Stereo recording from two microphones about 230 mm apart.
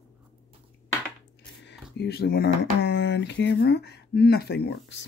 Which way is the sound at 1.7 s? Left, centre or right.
Left.